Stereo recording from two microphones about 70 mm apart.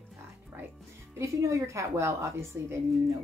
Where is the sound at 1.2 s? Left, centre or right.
Right.